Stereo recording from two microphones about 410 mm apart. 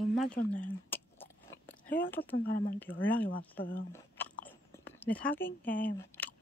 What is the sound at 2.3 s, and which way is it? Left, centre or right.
Speech, left.